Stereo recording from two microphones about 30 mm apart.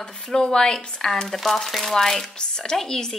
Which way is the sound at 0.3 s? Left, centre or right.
Left.